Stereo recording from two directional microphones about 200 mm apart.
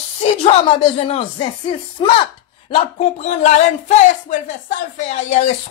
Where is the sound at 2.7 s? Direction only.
35° left (ahead or behind).